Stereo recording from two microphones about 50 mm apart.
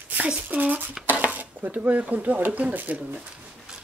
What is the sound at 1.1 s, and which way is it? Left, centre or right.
Speech, right.